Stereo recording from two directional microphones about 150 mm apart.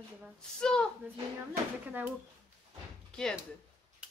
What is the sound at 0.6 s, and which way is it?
Speech, 5° left (ahead or behind).